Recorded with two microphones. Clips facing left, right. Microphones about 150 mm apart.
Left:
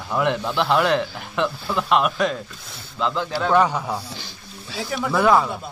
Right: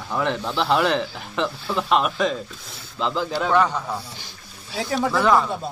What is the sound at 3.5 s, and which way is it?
Speech, 10° left (ahead or behind).